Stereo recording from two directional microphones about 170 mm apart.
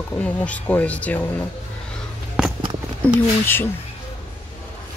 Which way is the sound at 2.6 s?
25° right (ahead or behind).